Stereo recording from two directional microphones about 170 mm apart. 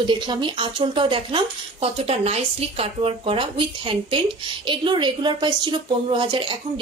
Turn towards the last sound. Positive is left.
turn(degrees=-30)  # may be behind; listen again after turning